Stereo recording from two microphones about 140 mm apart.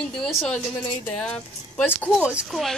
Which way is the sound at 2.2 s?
5° right (ahead or behind).